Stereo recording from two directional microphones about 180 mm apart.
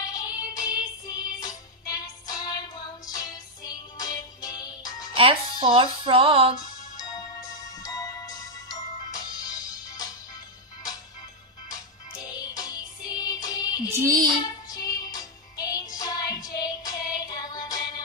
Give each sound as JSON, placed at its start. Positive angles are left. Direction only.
{"t": 0.0, "sound": "music", "side_deg": 20}
{"t": 5.1, "sound": "music", "side_deg": -30}
{"t": 7.0, "sound": "music", "side_deg": 20}
{"t": 11.7, "sound": "music", "side_deg": 20}